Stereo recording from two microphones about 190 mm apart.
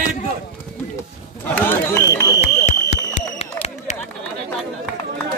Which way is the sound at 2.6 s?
40° left (ahead or behind).